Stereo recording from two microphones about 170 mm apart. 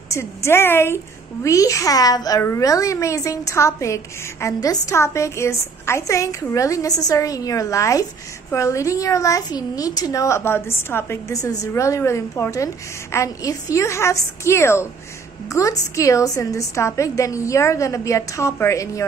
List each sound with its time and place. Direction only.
0.1 s a woman's voice: 15° left (ahead or behind)